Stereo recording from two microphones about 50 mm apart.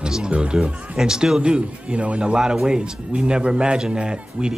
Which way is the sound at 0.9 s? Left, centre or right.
Centre.